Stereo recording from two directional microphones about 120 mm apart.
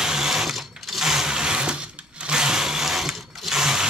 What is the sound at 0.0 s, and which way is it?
Sewing machine, 5° right (ahead or behind).